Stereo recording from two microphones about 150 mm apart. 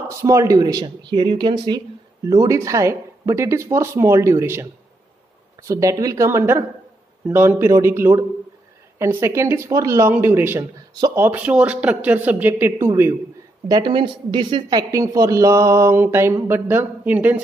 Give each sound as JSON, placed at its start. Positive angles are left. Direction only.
{"t": 0.1, "sound": "speech", "side_deg": -20}
{"t": 13.7, "sound": "speech", "side_deg": -30}